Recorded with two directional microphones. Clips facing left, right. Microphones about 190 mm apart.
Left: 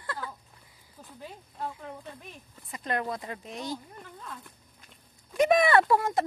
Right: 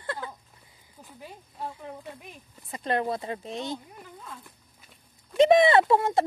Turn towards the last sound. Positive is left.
turn(degrees=-25)  # may be behind; listen again after turning